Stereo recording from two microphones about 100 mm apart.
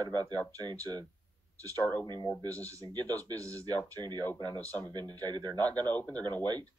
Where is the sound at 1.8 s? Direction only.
15° left (ahead or behind).